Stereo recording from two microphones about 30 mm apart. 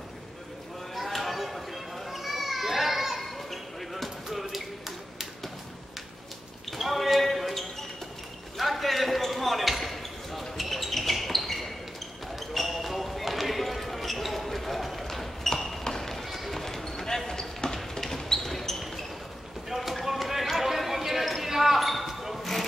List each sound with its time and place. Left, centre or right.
0.9 s children playing: centre
6.7 s basketball bounce: centre
18.8 s basketball bounce: centre
19.7 s a sound: centre
20.1 s basketball bounce: centre